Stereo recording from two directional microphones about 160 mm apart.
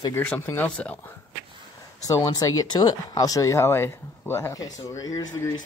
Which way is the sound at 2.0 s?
20° left (ahead or behind).